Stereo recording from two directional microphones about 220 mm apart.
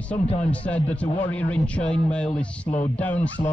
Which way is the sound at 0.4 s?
5° left (ahead or behind).